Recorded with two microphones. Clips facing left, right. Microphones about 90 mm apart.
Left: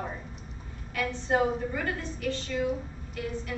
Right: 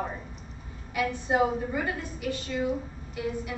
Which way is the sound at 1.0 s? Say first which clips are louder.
Right 2 dB; 15° right (ahead or behind).